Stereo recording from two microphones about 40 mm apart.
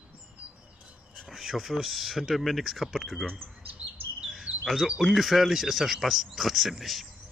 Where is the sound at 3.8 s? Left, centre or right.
Right.